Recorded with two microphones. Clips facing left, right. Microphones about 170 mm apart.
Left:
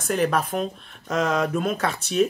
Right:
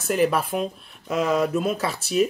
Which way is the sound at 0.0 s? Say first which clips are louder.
Right 1 dB; 5° right (ahead or behind).